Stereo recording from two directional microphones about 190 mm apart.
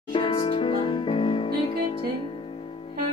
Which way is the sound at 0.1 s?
30° left (ahead or behind).